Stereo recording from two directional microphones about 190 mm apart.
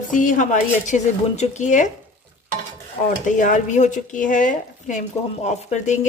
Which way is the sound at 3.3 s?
45° left (ahead or behind).